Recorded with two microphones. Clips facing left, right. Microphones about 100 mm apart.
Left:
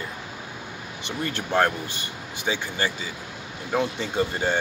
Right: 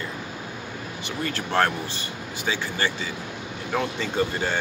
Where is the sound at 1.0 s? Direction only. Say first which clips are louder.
Even; 15° left (ahead or behind).